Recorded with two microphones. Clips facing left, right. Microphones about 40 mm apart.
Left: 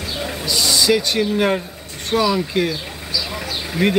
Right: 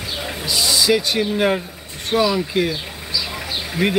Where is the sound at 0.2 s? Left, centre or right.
Centre.